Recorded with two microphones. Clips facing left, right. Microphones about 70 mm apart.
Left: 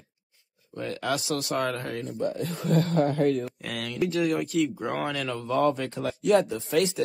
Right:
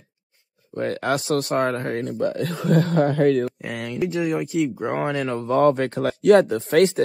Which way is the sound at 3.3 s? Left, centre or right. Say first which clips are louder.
Right 6 dB; right.